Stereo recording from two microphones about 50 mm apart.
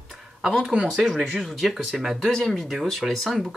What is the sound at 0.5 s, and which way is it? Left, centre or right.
Speech, centre.